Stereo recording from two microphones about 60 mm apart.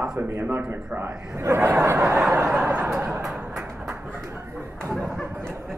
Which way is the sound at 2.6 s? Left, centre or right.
Right.